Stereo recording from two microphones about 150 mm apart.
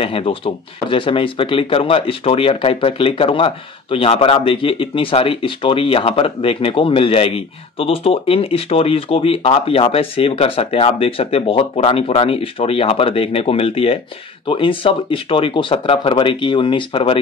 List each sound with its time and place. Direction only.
0.0 s speech: 35° left (ahead or behind)